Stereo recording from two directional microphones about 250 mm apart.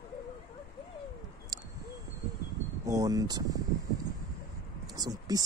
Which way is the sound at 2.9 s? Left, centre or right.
Centre.